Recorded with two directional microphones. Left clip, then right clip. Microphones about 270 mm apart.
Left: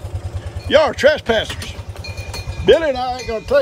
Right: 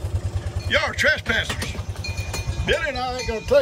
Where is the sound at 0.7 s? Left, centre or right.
Centre.